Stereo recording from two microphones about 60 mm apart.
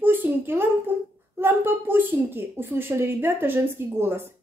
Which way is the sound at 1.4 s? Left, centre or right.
Right.